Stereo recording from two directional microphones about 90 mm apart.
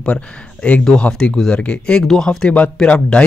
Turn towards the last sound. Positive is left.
turn(degrees=10)  # may be behind; listen again after turning